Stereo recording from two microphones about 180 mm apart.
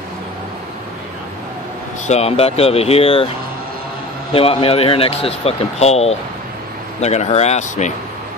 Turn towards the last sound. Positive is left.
turn(degrees=40)  # may be behind; listen again after turning